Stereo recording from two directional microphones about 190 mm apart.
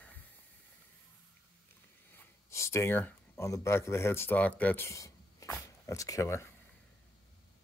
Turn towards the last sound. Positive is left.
turn(degrees=15)  # may be behind; listen again after turning